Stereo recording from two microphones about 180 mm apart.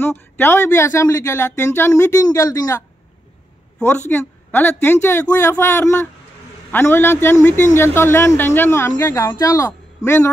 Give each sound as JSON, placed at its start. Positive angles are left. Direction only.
{"t": 0.0, "sound": "speech", "side_deg": 10}
{"t": 4.1, "sound": "speech", "side_deg": 10}